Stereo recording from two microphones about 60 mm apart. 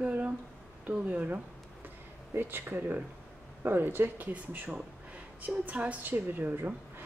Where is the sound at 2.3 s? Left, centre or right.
Right.